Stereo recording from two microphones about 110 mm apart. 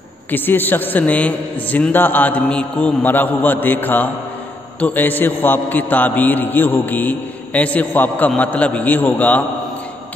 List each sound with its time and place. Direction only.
0.3 s a man's voice: 15° left (ahead or behind)